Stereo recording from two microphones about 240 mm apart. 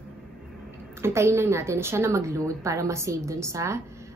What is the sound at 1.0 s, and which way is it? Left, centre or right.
A woman's voice, centre.